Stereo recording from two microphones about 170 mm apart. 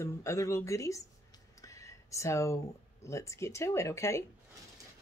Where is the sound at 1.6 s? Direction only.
20° left (ahead or behind).